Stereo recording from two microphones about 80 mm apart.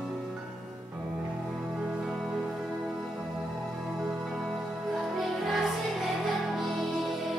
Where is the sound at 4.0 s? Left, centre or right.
Centre.